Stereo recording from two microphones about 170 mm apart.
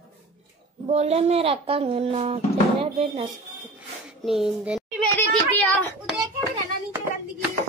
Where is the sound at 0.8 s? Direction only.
40° right (ahead or behind).